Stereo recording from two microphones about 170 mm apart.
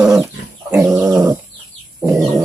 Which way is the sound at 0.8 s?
5° right (ahead or behind).